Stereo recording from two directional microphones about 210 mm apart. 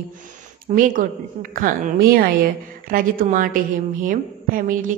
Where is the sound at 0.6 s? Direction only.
40° right (ahead or behind).